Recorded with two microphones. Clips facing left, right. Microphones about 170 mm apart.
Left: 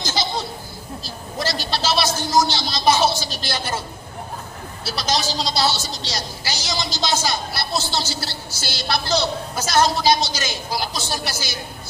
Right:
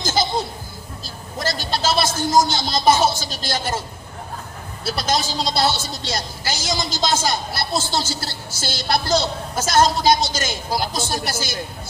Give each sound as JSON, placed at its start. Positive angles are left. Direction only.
{"t": 0.0, "sound": "music", "side_deg": -50}
{"t": 1.4, "sound": "a woman's voice", "side_deg": -50}
{"t": 4.8, "sound": "a woman's voice", "side_deg": -50}